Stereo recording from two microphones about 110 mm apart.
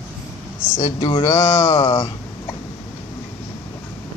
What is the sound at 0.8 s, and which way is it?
Speech, 40° left (ahead or behind).